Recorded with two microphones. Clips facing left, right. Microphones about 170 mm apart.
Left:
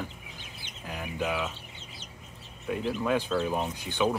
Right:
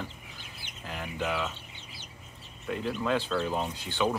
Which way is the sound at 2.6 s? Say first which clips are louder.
Left 2 dB; 5° left (ahead or behind).